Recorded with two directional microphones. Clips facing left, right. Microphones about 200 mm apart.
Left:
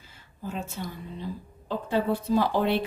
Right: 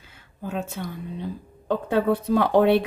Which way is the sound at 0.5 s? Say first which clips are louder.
Right 4 dB; 60° right (ahead or behind).